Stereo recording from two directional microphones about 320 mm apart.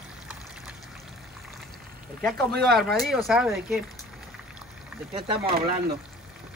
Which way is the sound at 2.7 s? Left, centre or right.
Centre.